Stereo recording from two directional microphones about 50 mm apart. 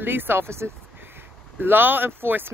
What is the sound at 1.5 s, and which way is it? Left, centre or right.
Speech, right.